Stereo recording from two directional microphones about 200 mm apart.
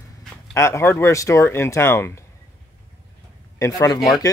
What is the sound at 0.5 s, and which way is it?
Speech, 15° left (ahead or behind).